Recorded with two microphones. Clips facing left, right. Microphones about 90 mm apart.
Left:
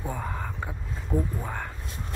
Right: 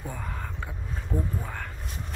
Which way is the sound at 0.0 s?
15° left (ahead or behind).